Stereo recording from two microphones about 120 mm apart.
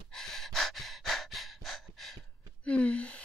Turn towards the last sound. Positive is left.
turn(degrees=10)  # may be behind; listen again after turning